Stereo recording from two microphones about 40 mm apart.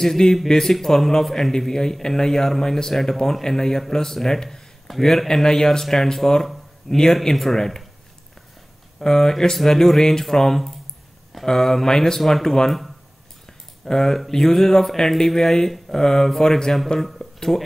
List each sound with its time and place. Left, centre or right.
0.0 s speech: centre
7.5 s speech: centre
9.0 s speech: centre
13.8 s speech: centre